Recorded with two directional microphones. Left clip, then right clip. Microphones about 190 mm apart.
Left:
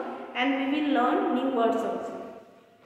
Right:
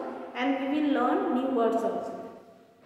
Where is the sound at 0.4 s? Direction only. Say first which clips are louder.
Left 2 dB; 5° right (ahead or behind).